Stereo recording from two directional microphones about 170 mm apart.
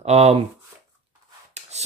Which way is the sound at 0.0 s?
40° right (ahead or behind).